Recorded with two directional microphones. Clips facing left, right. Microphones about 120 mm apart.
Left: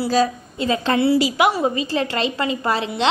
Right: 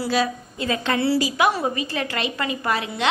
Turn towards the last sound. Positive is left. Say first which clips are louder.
# left 3 dB
turn(degrees=30)  # may be behind; listen again after turning